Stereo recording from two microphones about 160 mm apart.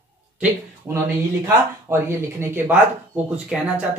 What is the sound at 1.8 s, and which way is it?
Speech, 15° right (ahead or behind).